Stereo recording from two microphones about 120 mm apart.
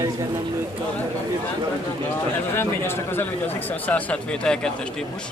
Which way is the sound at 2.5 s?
20° left (ahead or behind).